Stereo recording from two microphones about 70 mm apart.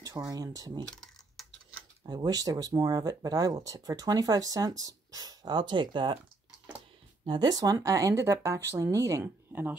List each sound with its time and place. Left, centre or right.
0.3 s speech: right
0.8 s typing: centre
2.0 s speech: right
7.2 s speech: right
9.2 s speech: right